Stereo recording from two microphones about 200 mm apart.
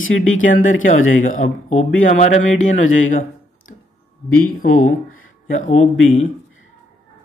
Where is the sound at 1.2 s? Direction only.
40° left (ahead or behind).